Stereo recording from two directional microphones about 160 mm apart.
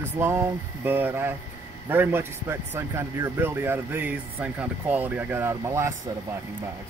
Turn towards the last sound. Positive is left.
turn(degrees=-15)  # may be behind; listen again after turning